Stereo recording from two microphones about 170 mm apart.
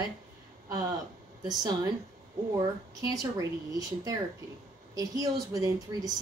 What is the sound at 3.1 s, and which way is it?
Speech, 20° right (ahead or behind).